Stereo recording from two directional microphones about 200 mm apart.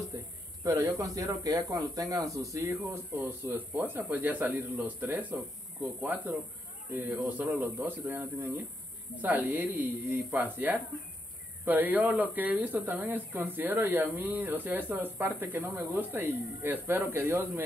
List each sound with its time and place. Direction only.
0.7 s speech: 15° right (ahead or behind)